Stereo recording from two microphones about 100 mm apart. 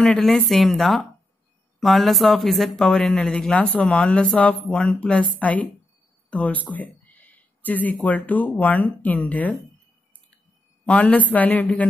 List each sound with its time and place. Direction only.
0.0 s a woman's voice: 5° left (ahead or behind)
10.9 s speech: 15° left (ahead or behind)